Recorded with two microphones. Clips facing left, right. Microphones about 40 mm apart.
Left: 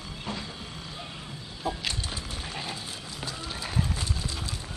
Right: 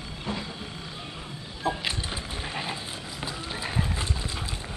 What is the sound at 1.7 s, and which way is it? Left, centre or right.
Music, right.